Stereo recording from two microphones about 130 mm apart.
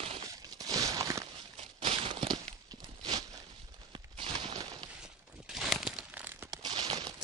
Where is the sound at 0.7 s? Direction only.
25° right (ahead or behind).